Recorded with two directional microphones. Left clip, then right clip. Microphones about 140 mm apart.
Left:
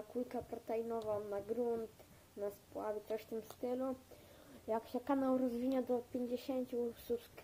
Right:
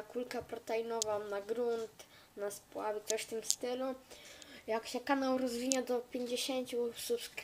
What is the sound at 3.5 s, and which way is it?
Speech, 25° right (ahead or behind).